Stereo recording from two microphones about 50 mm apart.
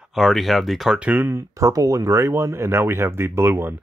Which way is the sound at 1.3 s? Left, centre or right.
Right.